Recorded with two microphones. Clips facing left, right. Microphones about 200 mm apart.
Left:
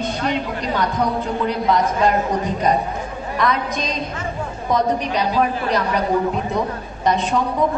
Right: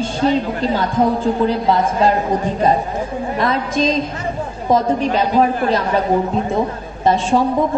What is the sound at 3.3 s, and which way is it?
A man's voice, 30° right (ahead or behind).